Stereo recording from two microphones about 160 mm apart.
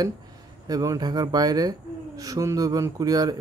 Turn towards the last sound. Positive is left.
turn(degrees=-25)  # may be behind; listen again after turning